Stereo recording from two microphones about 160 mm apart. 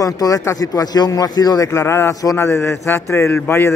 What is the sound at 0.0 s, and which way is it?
Speech, 20° left (ahead or behind).